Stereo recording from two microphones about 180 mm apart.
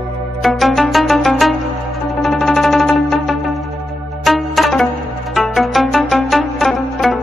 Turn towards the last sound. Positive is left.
turn(degrees=0)  # may be behind; listen again after turning